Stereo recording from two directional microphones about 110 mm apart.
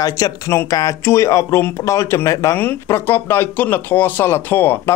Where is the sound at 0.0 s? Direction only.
35° left (ahead or behind).